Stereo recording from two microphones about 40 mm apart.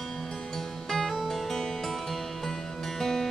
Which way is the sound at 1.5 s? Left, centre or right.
Centre.